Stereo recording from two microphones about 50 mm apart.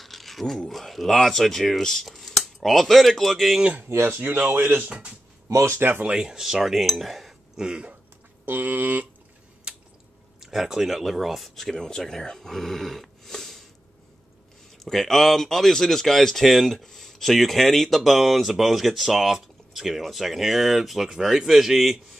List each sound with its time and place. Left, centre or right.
0.0 s speech: centre
3.9 s speech: right
4.5 s a sound: right
5.5 s speech: right
5.8 s speech: right
6.0 s speech: centre
6.4 s speech: centre
7.5 s speech: centre
8.5 s a sound: right
10.4 s speech: centre
14.9 s speech: centre